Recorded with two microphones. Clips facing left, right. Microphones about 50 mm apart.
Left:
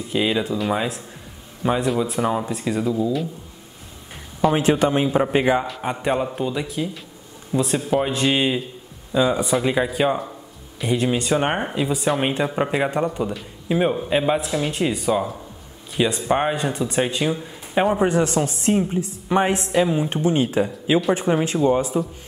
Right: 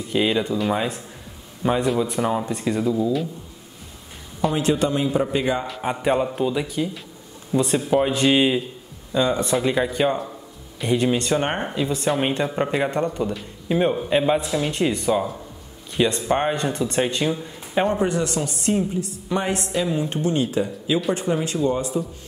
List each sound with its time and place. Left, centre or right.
0.1 s speech: centre
4.4 s speech: centre
4.6 s a woman's voice: left
5.7 s speech: centre
18.0 s a woman's voice: left